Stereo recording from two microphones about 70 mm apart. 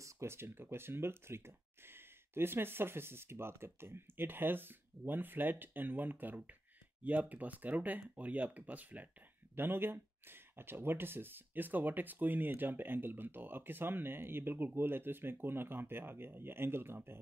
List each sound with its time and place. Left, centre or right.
0.0 s speech: right